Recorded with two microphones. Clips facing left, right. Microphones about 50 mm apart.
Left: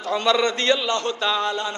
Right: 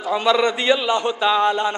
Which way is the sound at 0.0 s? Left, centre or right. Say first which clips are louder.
Right 2 dB; centre.